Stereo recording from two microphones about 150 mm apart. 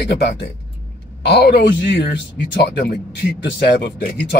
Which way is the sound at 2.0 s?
90° left.